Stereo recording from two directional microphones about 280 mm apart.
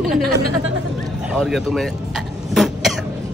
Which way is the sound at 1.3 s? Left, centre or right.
Centre.